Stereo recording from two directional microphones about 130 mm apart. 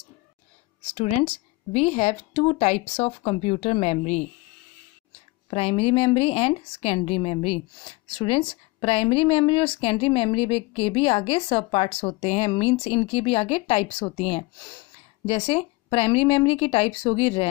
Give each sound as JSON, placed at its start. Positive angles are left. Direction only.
{"t": 0.9, "sound": "speech", "side_deg": 55}
{"t": 5.5, "sound": "speech", "side_deg": 50}